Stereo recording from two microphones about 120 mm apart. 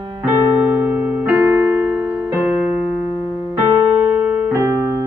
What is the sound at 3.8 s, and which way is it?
Keyboard, 20° right (ahead or behind).